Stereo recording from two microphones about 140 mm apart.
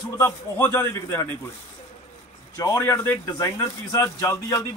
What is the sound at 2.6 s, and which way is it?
Speech, 20° left (ahead or behind).